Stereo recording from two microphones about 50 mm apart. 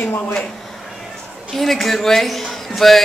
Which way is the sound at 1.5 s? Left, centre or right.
Centre.